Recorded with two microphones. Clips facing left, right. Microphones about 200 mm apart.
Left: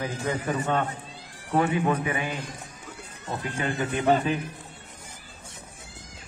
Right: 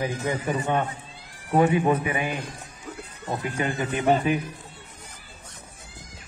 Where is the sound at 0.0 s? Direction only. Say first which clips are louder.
Right 2 dB; 15° right (ahead or behind).